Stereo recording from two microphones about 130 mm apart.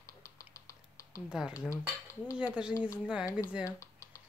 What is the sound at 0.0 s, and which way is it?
Typing, 25° left (ahead or behind).